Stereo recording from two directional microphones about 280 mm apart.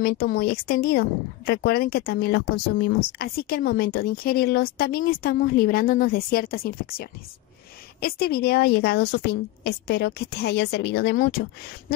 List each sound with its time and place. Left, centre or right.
0.0 s speech: left